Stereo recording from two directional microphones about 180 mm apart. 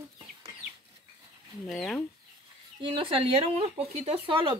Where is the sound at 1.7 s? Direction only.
Centre (ahead or behind).